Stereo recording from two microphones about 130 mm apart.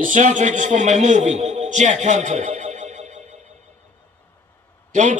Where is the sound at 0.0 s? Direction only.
75° right (ahead or behind).